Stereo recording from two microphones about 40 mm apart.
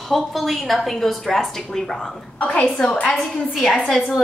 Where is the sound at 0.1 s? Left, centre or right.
Centre.